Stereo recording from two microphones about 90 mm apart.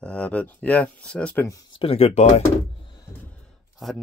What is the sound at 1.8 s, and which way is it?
Speech, 90° left.